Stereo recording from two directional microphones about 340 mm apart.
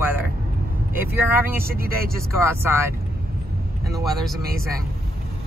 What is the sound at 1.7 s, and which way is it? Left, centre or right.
Speech, right.